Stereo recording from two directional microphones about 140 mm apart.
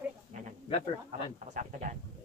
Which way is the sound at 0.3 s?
55° right (ahead or behind).